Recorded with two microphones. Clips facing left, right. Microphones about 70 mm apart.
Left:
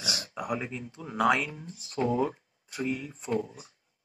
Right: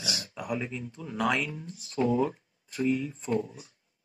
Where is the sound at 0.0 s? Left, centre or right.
Centre.